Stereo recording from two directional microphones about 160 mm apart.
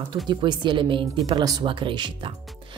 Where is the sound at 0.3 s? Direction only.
30° right (ahead or behind).